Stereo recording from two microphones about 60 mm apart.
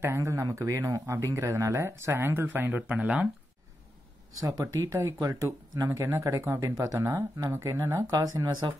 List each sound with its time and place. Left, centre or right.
0.2 s speech: right
1.9 s speech: right
4.4 s speech: right
6.8 s speech: right
7.6 s speech: right